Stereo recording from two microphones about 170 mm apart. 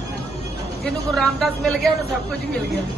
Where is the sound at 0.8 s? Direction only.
5° left (ahead or behind).